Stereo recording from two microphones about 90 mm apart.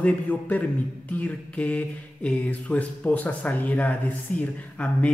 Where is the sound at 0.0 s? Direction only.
15° left (ahead or behind).